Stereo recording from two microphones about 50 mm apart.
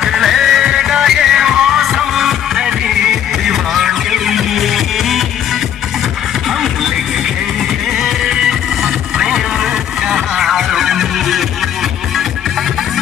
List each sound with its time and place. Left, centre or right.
0.0 s music: centre
8.0 s music: centre